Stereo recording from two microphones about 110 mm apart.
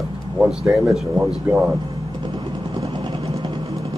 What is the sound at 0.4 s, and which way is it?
Speech, 5° right (ahead or behind).